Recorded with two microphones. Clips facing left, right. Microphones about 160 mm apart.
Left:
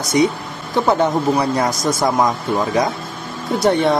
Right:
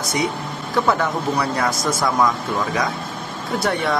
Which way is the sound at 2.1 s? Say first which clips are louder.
Left 2 dB; 30° left (ahead or behind).